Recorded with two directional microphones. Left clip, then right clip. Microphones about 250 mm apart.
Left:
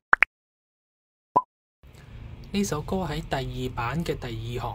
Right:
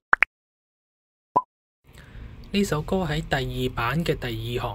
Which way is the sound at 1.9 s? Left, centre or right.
Centre.